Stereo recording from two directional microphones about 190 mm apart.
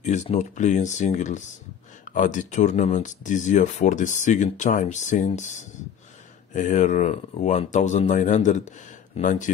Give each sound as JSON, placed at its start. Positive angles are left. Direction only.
{"t": 0.0, "sound": "speech", "side_deg": 35}